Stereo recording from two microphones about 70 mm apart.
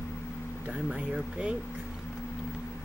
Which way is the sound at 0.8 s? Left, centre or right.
Centre.